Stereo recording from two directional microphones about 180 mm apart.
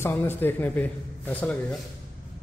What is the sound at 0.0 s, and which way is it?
A man's voice, 15° left (ahead or behind).